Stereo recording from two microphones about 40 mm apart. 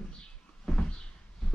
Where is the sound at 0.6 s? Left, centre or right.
Centre.